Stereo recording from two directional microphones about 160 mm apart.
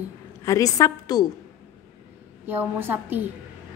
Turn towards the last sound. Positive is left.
turn(degrees=-10)  # may be behind; listen again after turning